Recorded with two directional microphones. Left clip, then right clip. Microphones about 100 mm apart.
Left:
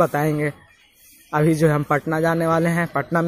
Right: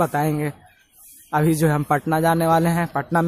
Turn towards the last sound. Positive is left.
turn(degrees=-25)  # may be behind; listen again after turning